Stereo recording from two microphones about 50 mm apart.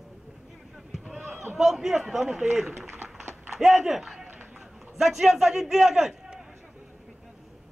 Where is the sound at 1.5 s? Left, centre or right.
Centre.